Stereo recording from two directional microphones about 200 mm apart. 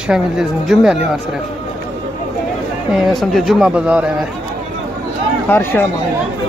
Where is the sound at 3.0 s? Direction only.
Centre (ahead or behind).